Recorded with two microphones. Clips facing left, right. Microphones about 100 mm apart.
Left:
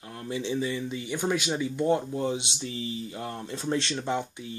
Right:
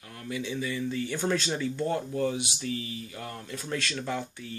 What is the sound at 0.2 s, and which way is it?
Speech, 30° left (ahead or behind).